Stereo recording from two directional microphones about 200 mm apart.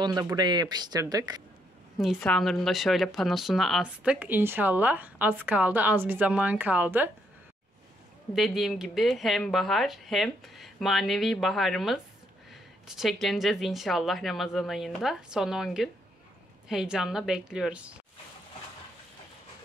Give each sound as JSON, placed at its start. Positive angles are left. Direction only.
{"t": 0.0, "sound": "speech", "side_deg": -20}
{"t": 2.0, "sound": "a woman's voice", "side_deg": 0}
{"t": 8.4, "sound": "speech", "side_deg": 0}